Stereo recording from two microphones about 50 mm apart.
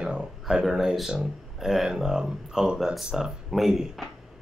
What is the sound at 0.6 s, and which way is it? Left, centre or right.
Speech, centre.